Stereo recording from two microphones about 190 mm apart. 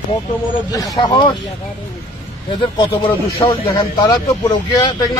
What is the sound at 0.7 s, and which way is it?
Speech, 20° left (ahead or behind).